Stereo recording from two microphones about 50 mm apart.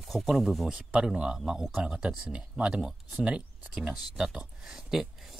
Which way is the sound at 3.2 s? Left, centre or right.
Right.